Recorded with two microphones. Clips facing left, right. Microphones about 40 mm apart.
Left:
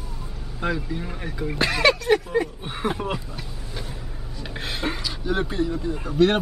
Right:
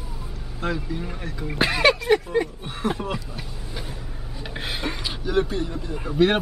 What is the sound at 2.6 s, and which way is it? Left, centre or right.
Speech, left.